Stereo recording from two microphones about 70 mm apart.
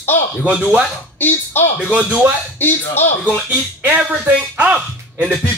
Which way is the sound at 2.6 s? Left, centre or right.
Left.